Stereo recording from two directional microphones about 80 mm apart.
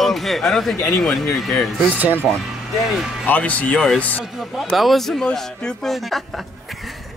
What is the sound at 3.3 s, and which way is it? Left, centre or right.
Speech, centre.